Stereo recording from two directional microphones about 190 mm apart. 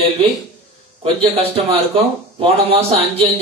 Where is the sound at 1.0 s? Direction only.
30° right (ahead or behind).